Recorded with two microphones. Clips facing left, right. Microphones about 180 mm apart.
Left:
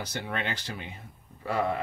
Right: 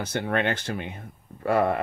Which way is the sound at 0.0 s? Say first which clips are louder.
Right 8 dB; 55° right (ahead or behind).